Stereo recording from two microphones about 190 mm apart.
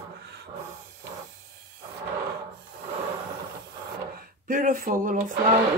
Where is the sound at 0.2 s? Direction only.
60° right (ahead or behind).